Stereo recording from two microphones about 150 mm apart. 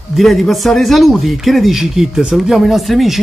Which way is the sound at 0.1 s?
Centre (ahead or behind).